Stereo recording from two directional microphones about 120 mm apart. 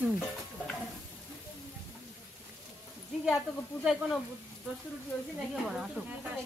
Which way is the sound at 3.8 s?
Centre (ahead or behind).